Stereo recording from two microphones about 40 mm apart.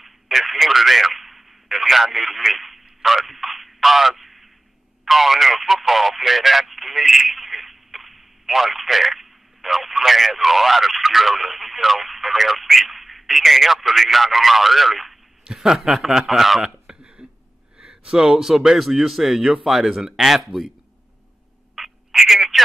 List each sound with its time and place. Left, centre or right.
0.0 s a sound: centre
5.0 s speech: centre
15.4 s a man's voice: centre
21.7 s telephone: centre